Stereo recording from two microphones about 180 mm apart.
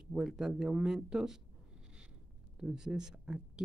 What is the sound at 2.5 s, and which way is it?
Speech, 5° right (ahead or behind).